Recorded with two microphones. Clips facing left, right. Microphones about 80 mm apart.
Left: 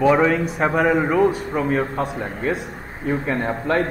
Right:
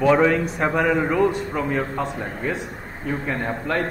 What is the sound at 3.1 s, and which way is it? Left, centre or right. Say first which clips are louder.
Speech: left 4 dB; left.